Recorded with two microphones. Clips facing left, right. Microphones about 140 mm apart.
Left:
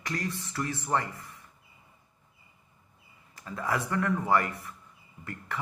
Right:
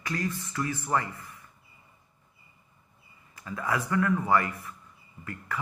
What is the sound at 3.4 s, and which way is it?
A man's voice, 30° left (ahead or behind).